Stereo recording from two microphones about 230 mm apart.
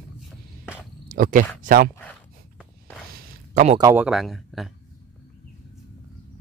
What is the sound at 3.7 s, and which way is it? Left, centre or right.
Speech, centre.